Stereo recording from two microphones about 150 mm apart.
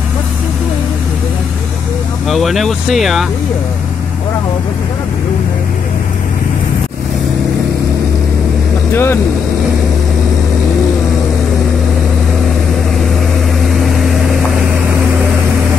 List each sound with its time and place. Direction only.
2.2 s speech: centre (ahead or behind)
8.9 s speech: 15° left (ahead or behind)